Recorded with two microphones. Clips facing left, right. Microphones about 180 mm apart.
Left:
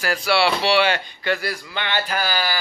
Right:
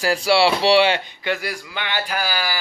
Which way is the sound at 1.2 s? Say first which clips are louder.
Left 2 dB; 15° right (ahead or behind).